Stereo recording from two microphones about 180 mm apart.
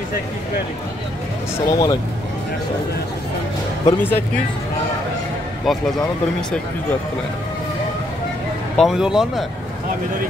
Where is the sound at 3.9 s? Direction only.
10° left (ahead or behind).